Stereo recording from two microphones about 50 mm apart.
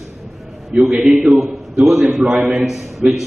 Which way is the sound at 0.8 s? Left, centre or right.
Centre.